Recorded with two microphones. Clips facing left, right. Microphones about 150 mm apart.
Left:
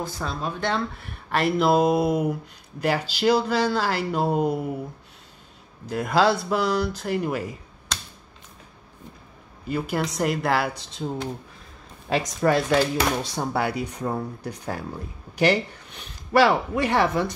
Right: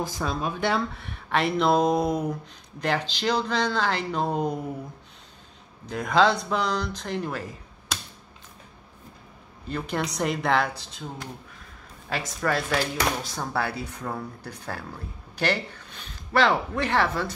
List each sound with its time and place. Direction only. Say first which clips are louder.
0.0 s speech: right 1 dB; 10° right (ahead or behind); by 4.6 s 5° left (ahead or behind)
5.9 s speech: left 1 dB; 5° left (ahead or behind)
9.7 s speech: left 3 dB; 5° left (ahead or behind)
11.0 s speech: left 9 dB; 25° left (ahead or behind)